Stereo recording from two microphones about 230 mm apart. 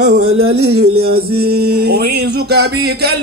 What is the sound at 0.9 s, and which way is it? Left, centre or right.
Music, right.